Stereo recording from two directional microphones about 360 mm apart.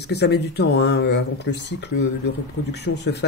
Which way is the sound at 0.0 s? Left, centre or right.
Left.